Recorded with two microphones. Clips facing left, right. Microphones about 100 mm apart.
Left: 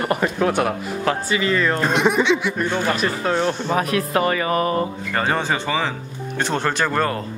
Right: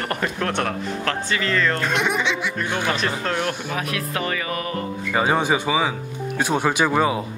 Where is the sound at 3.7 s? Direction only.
35° left (ahead or behind).